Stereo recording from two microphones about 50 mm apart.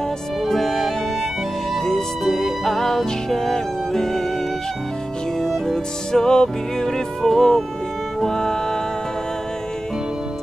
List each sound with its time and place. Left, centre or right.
0.5 s music: centre
5.4 s music: centre